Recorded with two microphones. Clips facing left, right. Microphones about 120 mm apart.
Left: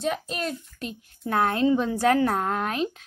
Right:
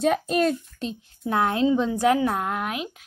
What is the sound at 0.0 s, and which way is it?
Speech, 45° right (ahead or behind).